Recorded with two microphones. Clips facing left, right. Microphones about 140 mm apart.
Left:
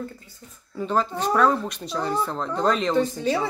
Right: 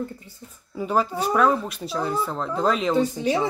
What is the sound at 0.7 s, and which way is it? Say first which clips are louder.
Speech: right 1 dB; 10° right (ahead or behind).